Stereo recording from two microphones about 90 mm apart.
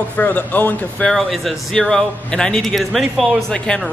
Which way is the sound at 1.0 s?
Centre (ahead or behind).